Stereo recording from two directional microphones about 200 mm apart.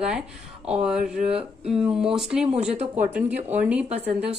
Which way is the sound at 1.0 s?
35° right (ahead or behind).